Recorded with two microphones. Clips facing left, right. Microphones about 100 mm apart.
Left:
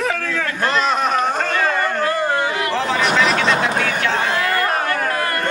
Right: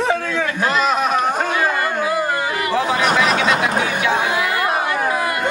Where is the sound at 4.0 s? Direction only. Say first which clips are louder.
Right 1 dB; 15° right (ahead or behind).